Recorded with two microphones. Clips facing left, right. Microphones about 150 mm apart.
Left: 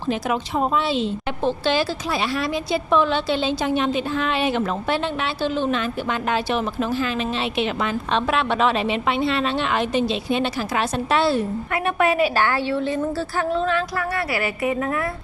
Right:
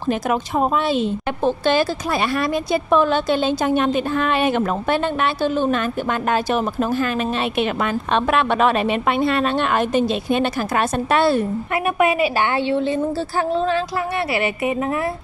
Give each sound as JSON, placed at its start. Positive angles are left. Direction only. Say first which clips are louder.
{"t": 0.1, "sound": "a woman's voice", "louder": "right 3 dB", "side_deg": -50}
{"t": 12.0, "sound": "a woman's voice", "louder": "right 1 dB", "side_deg": -10}